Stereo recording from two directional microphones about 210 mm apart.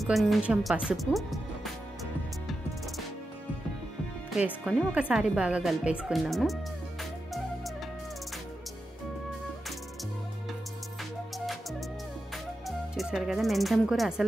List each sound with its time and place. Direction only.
0.0 s speech: centre (ahead or behind)
4.4 s speech: 5° right (ahead or behind)
12.6 s speech: centre (ahead or behind)